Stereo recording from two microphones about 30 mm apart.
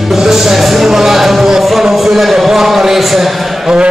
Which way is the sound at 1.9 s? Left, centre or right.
Centre.